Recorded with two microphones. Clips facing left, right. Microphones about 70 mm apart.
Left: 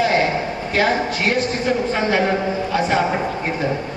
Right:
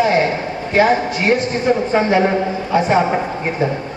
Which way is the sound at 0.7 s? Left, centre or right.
Right.